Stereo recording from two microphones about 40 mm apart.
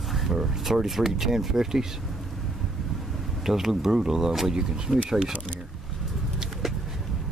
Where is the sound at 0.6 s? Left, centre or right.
Centre.